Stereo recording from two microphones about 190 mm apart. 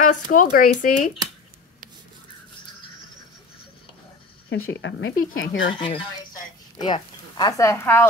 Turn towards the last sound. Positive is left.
turn(degrees=10)  # may be behind; listen again after turning